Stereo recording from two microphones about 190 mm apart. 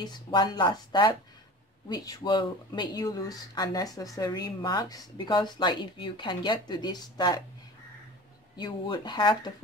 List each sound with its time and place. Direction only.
0.0 s speech: 20° left (ahead or behind)
8.5 s speech: 25° left (ahead or behind)